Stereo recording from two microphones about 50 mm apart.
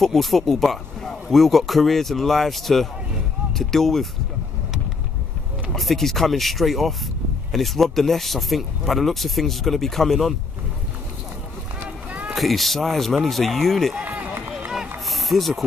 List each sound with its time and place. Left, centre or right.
0.0 s speech: centre
5.7 s speech: centre
12.1 s a sound: right
12.4 s speech: centre
14.0 s run: right
15.0 s vehicle: centre